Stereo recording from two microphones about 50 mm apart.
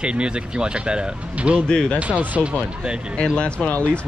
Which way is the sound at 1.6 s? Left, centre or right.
Left.